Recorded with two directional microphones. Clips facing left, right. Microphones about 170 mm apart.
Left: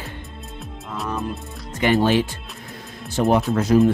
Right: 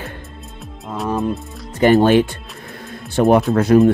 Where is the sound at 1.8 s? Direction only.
50° right (ahead or behind).